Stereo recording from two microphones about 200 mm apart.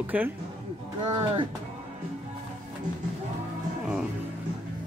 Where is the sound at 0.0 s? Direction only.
10° right (ahead or behind).